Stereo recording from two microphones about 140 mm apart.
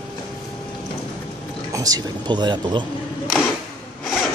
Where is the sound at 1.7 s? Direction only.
25° right (ahead or behind).